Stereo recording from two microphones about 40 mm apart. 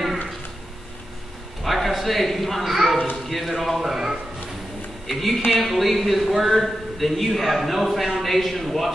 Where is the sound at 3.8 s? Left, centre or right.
Centre.